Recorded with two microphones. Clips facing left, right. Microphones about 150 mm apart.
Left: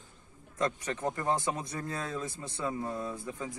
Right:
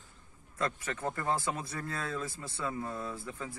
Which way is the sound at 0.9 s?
20° left (ahead or behind).